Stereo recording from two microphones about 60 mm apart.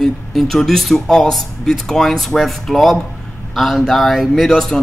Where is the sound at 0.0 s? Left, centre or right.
Centre.